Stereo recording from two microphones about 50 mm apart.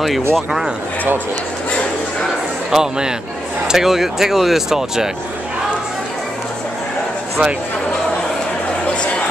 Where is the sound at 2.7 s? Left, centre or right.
Centre.